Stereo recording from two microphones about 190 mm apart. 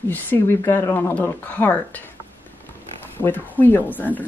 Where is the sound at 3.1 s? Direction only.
10° left (ahead or behind).